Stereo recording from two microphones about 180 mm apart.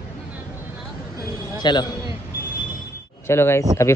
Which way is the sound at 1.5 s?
25° left (ahead or behind).